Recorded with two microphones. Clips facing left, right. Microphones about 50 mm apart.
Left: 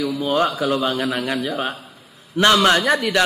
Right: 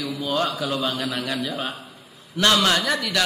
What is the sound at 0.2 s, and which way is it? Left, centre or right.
A man's voice, left.